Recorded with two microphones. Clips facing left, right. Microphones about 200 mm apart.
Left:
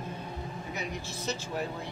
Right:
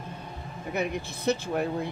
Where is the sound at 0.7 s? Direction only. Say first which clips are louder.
Right 10 dB; 60° right (ahead or behind).